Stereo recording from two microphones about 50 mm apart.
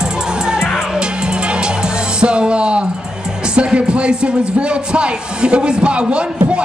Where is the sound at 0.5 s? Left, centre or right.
Centre.